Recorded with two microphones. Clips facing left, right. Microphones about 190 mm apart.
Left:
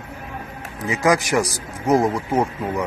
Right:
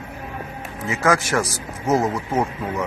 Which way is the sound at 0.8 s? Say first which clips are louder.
Left 1 dB; 15° left (ahead or behind).